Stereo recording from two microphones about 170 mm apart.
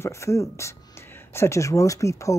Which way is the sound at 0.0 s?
15° left (ahead or behind).